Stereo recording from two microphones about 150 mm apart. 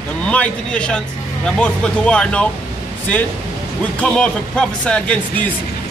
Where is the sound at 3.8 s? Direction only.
5° left (ahead or behind).